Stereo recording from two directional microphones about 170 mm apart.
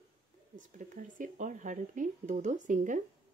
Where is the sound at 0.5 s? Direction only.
50° right (ahead or behind).